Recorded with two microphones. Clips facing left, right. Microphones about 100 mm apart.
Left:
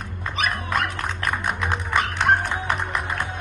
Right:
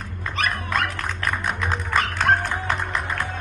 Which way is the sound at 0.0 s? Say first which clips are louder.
Even; 15° left (ahead or behind).